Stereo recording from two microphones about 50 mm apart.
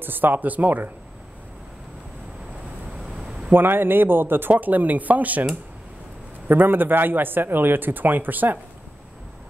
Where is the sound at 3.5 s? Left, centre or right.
Right.